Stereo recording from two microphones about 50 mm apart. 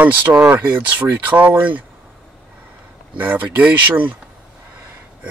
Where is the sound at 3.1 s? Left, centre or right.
Right.